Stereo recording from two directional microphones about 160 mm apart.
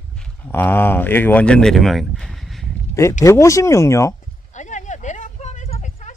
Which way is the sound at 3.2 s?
20° left (ahead or behind).